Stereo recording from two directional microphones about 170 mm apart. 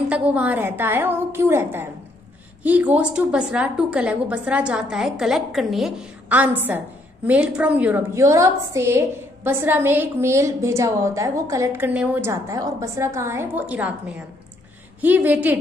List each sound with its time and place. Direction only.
0.1 s a woman's voice: 10° right (ahead or behind)